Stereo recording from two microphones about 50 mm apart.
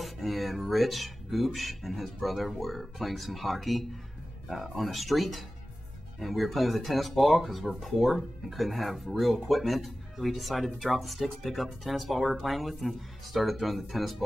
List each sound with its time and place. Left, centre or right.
0.0 s speech: centre